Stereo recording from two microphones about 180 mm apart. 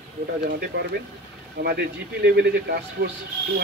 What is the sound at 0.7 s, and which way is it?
Speech, 65° right (ahead or behind).